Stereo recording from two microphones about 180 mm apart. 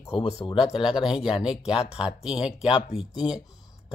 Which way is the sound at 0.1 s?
35° left (ahead or behind).